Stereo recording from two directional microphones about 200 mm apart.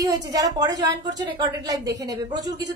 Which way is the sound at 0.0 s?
20° right (ahead or behind).